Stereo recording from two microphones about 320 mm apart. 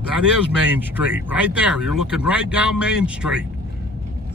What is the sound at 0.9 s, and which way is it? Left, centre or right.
Speech, centre.